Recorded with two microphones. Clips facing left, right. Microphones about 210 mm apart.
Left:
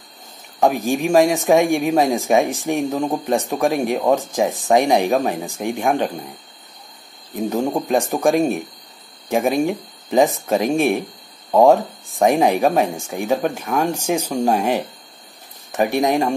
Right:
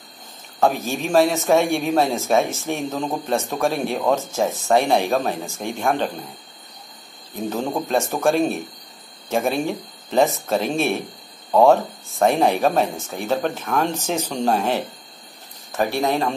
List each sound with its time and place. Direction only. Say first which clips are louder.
0.6 s speech: left 3 dB; 15° left (ahead or behind)
7.3 s speech: left 4 dB; 15° left (ahead or behind)